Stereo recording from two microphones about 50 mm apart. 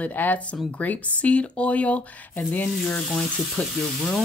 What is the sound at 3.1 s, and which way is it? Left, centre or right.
Speech, centre.